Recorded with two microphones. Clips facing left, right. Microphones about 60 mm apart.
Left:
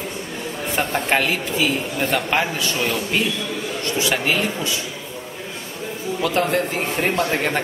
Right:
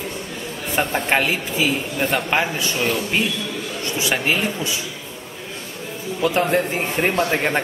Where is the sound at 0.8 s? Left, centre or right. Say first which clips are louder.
Right 1 dB; centre.